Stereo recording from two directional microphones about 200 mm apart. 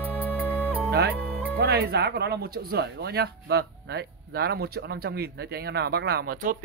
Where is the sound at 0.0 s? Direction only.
10° left (ahead or behind).